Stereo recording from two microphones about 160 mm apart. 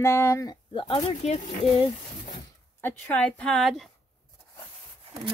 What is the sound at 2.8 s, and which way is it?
Speech, 10° left (ahead or behind).